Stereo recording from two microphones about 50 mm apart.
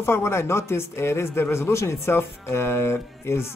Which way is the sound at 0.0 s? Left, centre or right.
Left.